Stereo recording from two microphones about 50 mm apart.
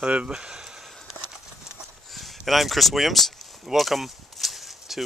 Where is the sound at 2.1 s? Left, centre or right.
Centre.